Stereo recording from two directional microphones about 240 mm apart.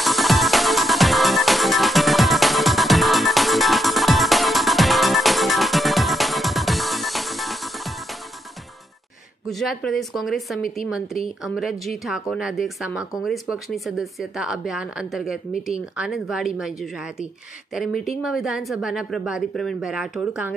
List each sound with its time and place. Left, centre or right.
0.0 s music: centre
9.5 s speech: centre